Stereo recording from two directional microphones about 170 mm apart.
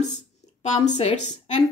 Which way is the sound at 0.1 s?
40° left (ahead or behind).